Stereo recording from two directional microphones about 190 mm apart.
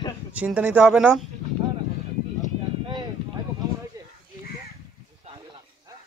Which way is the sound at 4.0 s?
15° right (ahead or behind).